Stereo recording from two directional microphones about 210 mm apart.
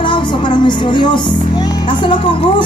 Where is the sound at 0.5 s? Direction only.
20° left (ahead or behind).